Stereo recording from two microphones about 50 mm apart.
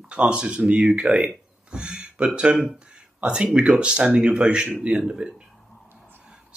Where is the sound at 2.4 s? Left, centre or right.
Centre.